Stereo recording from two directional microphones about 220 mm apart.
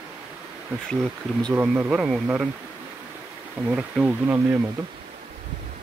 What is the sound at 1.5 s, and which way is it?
Speech, 10° right (ahead or behind).